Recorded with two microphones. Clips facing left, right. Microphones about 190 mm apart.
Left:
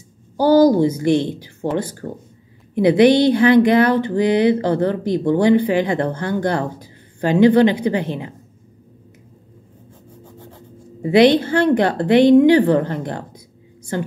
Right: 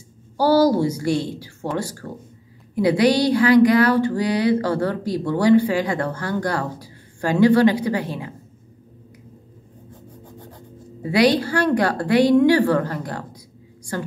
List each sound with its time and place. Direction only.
0.4 s speech: 20° left (ahead or behind)
11.0 s speech: 25° left (ahead or behind)